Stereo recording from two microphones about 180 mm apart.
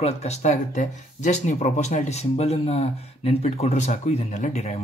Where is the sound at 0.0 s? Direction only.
35° left (ahead or behind).